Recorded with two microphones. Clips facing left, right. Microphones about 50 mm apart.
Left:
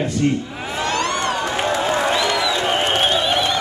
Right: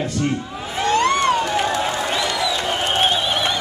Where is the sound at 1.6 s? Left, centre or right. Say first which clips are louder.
Left 1 dB; left.